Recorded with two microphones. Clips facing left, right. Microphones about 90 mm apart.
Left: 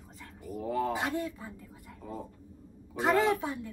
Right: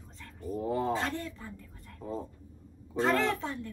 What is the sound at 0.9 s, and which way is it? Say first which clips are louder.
Speech: even; 15° left (ahead or behind).